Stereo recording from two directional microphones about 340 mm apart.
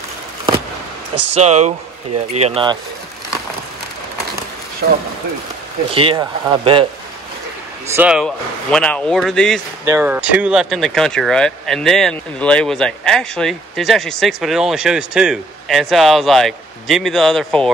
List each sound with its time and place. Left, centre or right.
1.3 s speech: centre
4.8 s speech: right
5.9 s speech: centre
7.9 s speech: centre